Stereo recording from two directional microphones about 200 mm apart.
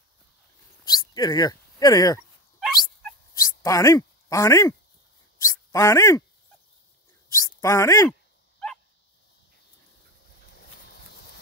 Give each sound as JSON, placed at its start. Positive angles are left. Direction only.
{"t": 0.8, "sound": "a sound", "side_deg": 20}
{"t": 3.3, "sound": "speech", "side_deg": 15}
{"t": 7.3, "sound": "speech", "side_deg": 15}